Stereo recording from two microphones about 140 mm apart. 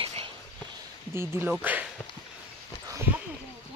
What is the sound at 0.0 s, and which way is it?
Whispering, 40° right (ahead or behind).